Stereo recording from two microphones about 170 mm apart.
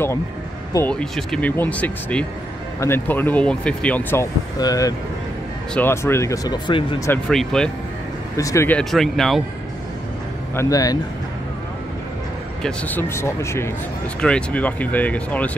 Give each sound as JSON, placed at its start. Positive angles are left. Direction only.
{"t": 0.8, "sound": "speech", "side_deg": 5}
{"t": 4.6, "sound": "speech", "side_deg": 20}
{"t": 7.1, "sound": "speech", "side_deg": 5}
{"t": 8.4, "sound": "speech", "side_deg": 15}
{"t": 10.5, "sound": "speech", "side_deg": 20}
{"t": 12.6, "sound": "speech", "side_deg": 10}